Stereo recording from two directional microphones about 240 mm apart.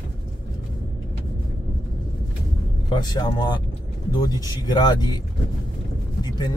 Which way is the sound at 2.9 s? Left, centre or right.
Centre.